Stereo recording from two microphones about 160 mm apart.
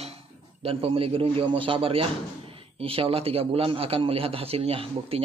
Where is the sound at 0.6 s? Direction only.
35° right (ahead or behind).